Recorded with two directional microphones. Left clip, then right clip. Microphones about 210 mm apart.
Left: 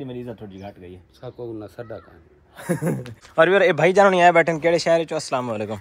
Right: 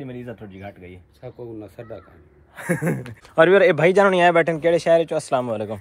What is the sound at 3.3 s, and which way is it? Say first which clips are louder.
Speech: right 2 dB; centre (ahead or behind).